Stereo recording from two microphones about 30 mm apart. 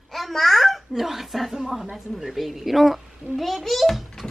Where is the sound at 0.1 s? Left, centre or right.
Centre.